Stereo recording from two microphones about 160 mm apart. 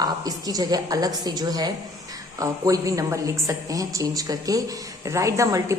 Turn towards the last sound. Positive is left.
turn(degrees=-20)  # may be behind; listen again after turning